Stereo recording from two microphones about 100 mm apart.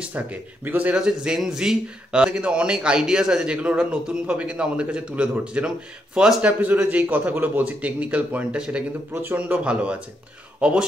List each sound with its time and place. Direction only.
0.0 s a man's voice: 15° right (ahead or behind)